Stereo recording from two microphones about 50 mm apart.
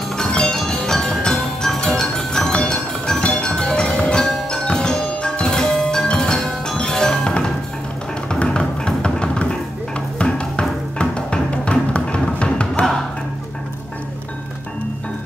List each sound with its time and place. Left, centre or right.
0.1 s music: centre
6.3 s tubular bells: centre
8.3 s music: centre